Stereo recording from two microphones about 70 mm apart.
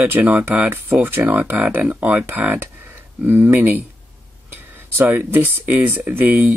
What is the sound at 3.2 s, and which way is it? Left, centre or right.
Speech, right.